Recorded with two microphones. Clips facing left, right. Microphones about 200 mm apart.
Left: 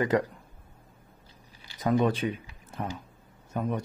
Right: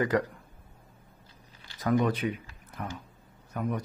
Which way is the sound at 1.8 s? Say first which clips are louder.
Left 1 dB; 25° left (ahead or behind).